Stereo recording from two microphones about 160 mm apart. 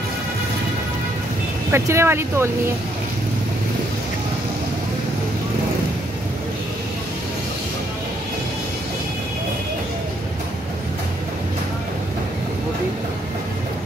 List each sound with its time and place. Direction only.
1.7 s speech: 15° right (ahead or behind)